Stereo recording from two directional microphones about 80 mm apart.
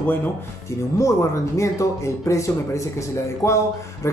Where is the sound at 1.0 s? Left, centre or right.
Left.